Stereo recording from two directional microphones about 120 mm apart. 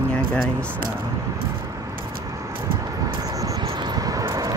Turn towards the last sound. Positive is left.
turn(degrees=-30)  # may be behind; listen again after turning